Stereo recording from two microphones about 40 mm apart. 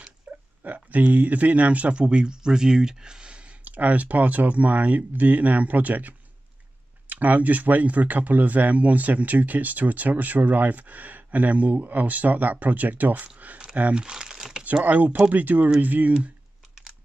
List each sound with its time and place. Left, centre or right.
0.3 s a sound: right
0.7 s speech: right
3.6 s speech: right
13.9 s crumpling: centre
14.6 s speech: right